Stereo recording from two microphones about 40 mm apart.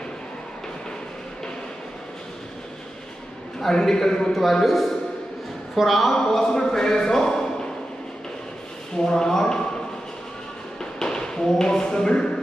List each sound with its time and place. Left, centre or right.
3.9 s speech: centre
4.3 s a man's voice: centre
6.1 s speech: centre
8.9 s speech: centre
10.8 s a sound: centre